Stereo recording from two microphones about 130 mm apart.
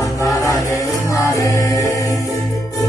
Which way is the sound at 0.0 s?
25° left (ahead or behind).